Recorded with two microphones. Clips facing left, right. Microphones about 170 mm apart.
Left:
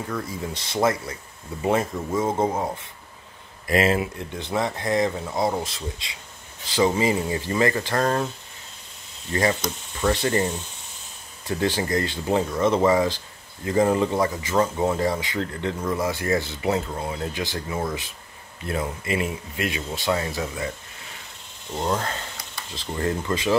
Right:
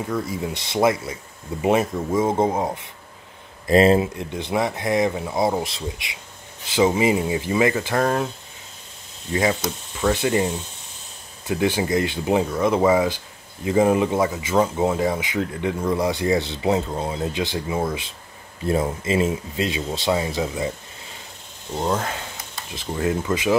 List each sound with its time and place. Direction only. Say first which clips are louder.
0.1 s speech: right 4 dB; 15° right (ahead or behind)
3.6 s speech: right 6 dB; 30° right (ahead or behind)
4.2 s speech: right 3 dB; 15° right (ahead or behind)
9.3 s speech: right 2 dB; 5° right (ahead or behind)
18.7 s speech: right 5 dB; 25° right (ahead or behind)
21.7 s speech: right 2 dB; 10° right (ahead or behind)
22.4 s a sound: right 2 dB; 20° right (ahead or behind)
22.9 s speech: right 3 dB; 5° right (ahead or behind)